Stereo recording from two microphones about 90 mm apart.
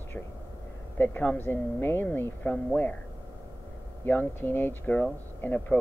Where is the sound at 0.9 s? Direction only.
20° left (ahead or behind).